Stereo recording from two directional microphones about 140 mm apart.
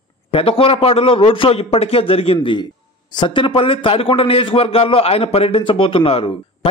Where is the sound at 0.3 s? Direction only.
40° left (ahead or behind).